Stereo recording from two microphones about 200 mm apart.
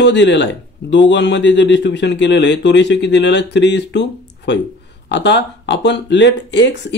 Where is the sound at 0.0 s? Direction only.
60° left (ahead or behind).